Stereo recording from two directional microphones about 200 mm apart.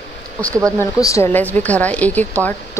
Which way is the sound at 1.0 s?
15° left (ahead or behind).